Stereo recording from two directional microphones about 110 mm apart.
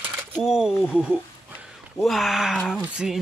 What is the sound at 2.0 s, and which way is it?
Speech, centre (ahead or behind).